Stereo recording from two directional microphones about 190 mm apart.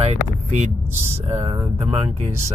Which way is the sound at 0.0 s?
35° right (ahead or behind).